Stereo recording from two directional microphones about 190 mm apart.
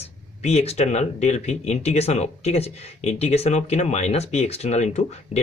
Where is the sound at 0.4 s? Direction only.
35° left (ahead or behind).